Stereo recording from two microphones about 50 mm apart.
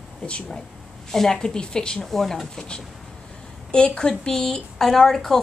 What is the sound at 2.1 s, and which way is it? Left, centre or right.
Speech, centre.